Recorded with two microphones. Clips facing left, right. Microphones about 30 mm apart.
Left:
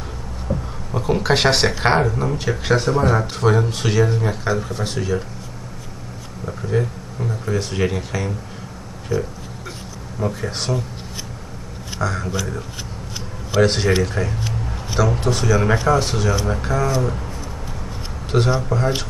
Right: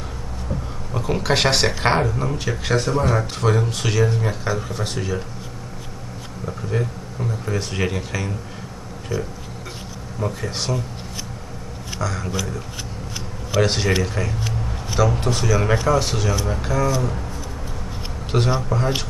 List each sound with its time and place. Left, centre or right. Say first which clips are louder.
0.5 s a sound: left 4 dB; centre
0.9 s speech: left 2 dB; centre
6.4 s speech: left 3 dB; centre
10.4 s speech: left 1 dB; centre
12.2 s speech: left 1 dB; centre
13.5 s speech: left 3 dB; centre
18.3 s speech: left 2 dB; centre